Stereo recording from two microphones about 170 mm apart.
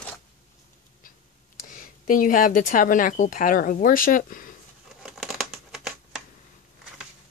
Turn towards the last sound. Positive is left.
turn(degrees=0)  # may be behind; listen again after turning